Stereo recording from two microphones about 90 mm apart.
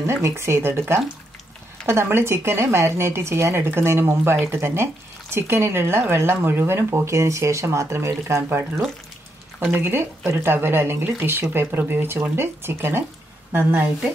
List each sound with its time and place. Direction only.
0.0 s a woman's voice: 30° right (ahead or behind)